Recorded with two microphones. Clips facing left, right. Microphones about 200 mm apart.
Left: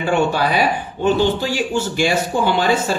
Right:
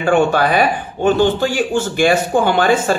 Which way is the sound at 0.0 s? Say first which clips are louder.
Right 4 dB; 50° right (ahead or behind).